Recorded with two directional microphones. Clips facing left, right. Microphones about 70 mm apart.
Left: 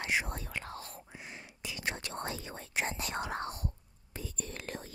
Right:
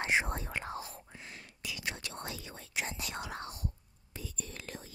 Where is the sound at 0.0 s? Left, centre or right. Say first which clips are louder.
Right 3 dB; right.